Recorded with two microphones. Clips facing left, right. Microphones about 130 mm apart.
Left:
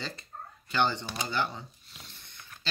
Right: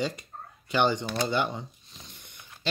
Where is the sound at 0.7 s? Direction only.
15° right (ahead or behind).